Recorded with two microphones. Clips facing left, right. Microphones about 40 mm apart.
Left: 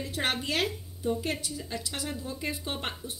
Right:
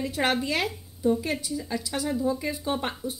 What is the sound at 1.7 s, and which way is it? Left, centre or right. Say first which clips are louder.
Speech: right 7 dB; centre.